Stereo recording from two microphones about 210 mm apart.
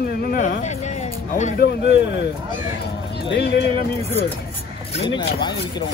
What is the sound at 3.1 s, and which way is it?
Speech, 50° left (ahead or behind).